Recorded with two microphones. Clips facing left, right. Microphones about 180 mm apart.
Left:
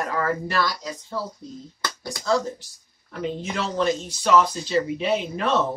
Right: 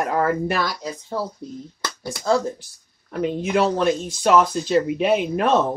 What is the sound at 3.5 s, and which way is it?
Speech, 55° right (ahead or behind).